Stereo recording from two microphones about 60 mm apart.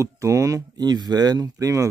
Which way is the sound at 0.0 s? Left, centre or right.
Right.